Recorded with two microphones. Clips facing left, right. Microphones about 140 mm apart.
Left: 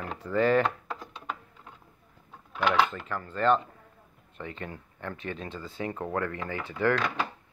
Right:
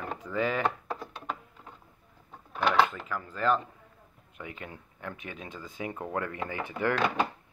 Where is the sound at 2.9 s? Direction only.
5° right (ahead or behind).